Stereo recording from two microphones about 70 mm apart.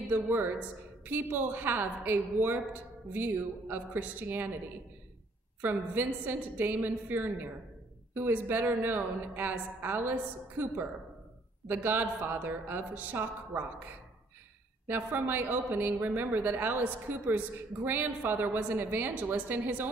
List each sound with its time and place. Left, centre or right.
0.1 s a woman's voice: right
5.6 s a woman's voice: right
11.6 s a woman's voice: right